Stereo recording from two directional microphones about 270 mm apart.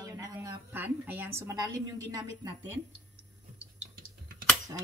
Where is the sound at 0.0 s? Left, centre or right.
Centre.